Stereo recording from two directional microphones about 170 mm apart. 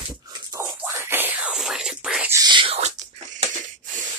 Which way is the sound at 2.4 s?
30° right (ahead or behind).